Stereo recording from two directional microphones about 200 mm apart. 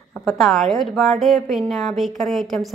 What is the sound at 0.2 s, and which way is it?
A woman's voice, centre (ahead or behind).